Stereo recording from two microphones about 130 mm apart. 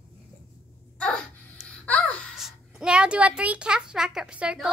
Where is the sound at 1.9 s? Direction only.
10° left (ahead or behind).